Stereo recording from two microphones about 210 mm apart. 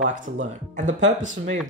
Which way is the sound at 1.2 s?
35° right (ahead or behind).